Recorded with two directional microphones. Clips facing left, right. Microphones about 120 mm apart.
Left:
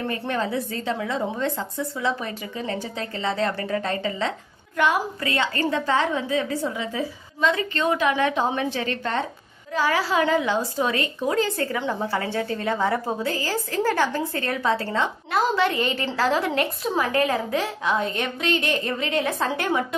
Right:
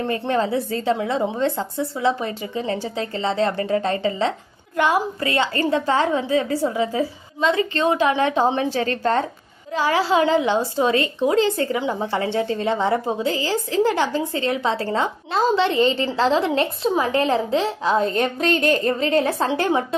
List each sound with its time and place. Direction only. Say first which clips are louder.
0.0 s a woman's voice: right 5 dB; 30° right (ahead or behind)
9.8 s a woman's voice: right 3 dB; 25° right (ahead or behind)